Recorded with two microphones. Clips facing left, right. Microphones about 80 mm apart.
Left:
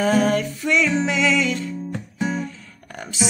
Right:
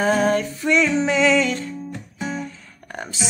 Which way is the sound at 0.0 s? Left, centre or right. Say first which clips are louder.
Even; right.